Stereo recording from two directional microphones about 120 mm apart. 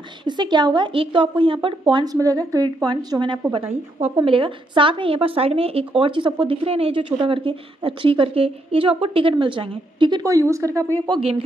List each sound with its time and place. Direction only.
0.2 s a woman's voice: 40° right (ahead or behind)
10.2 s a woman's voice: 25° right (ahead or behind)
11.1 s a woman's voice: 50° right (ahead or behind)